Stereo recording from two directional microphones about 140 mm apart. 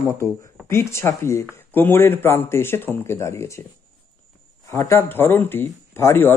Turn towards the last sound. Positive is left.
turn(degrees=15)  # may be behind; listen again after turning